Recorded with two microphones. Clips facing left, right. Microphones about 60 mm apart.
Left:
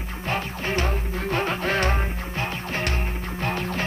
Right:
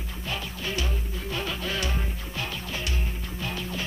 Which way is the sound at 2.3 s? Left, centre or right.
Left.